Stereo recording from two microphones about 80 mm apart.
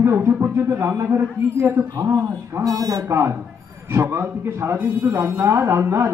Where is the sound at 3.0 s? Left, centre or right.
Right.